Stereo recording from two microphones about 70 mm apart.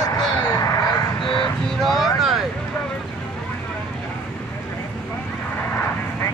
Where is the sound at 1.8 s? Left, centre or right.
Centre.